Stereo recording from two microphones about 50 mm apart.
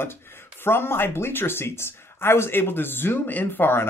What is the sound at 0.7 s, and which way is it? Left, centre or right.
Speech, left.